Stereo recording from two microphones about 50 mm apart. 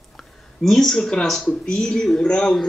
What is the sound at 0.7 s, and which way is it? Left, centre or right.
A man's voice, centre.